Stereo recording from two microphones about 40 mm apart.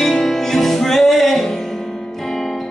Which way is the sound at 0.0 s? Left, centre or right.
Centre.